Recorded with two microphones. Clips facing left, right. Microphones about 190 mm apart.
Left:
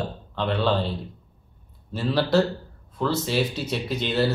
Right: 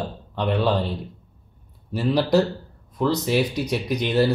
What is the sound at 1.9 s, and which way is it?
Speech, 15° right (ahead or behind).